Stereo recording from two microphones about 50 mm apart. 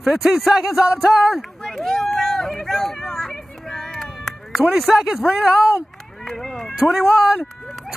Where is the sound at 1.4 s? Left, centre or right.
Centre.